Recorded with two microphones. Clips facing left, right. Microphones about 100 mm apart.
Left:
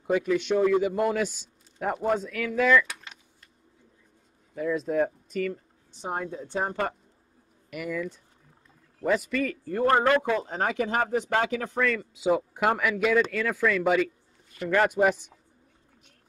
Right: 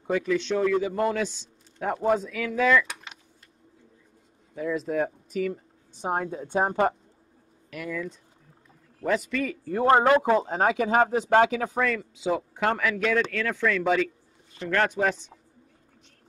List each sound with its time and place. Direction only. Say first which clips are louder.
0.0 s a man's voice: left 1 dB; 10° left (ahead or behind)
2.9 s a sound: right 2 dB; 20° right (ahead or behind)
4.6 s speech: left 1 dB; centre (ahead or behind)
5.5 s a woman's voice: right 1 dB; 20° right (ahead or behind)
7.7 s a man's voice: left 1 dB; 5° left (ahead or behind)
9.8 s a man's voice: right 3 dB; 20° right (ahead or behind); by 15.3 s 10° left (ahead or behind)